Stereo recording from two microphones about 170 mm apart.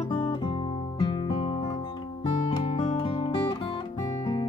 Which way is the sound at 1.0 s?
25° left (ahead or behind).